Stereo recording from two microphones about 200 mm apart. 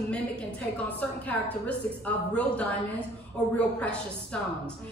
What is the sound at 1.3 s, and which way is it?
A woman's voice, 5° left (ahead or behind).